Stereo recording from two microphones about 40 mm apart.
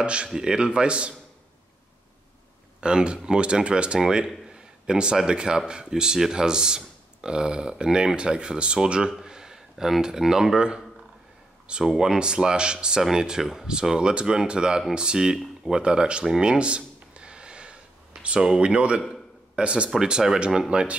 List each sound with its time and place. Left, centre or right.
0.0 s speech: right
2.8 s speech: right
4.5 s a sound: right
5.1 s speech: centre
9.2 s a sound: centre
10.0 s speech: centre
13.9 s speech: right
16.3 s a sound: right
19.5 s speech: right